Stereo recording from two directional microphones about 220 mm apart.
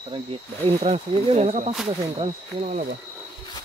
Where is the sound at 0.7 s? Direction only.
25° right (ahead or behind).